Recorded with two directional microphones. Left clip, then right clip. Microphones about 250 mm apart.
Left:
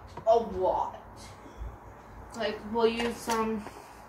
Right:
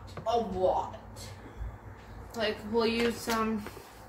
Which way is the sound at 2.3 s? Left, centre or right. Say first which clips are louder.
Right 1 dB; right.